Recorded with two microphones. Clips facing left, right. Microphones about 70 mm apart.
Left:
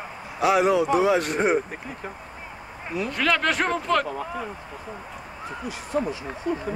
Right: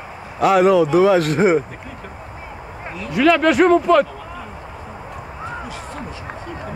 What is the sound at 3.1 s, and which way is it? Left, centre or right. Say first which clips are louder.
Speech: right 10 dB; centre.